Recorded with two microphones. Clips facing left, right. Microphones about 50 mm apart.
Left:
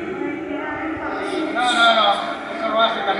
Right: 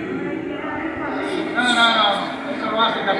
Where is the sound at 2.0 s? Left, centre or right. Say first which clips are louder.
Left 1 dB; left.